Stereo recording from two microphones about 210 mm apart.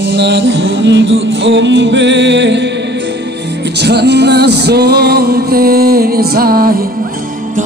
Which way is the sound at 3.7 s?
50° right (ahead or behind).